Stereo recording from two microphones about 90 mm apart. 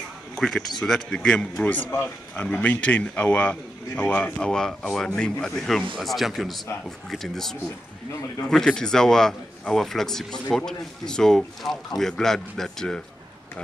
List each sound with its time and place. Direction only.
0.4 s a man's voice: 5° left (ahead or behind)